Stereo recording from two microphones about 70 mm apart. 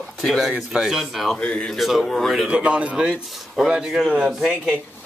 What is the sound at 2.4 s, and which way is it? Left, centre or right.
Speech, centre.